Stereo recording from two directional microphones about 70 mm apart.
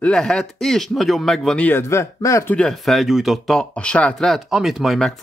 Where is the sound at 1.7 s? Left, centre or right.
Left.